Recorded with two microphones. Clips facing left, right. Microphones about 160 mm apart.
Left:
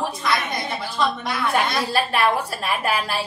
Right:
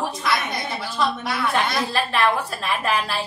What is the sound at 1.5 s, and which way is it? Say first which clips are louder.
A woman's voice: left 2 dB; 10° left (ahead or behind).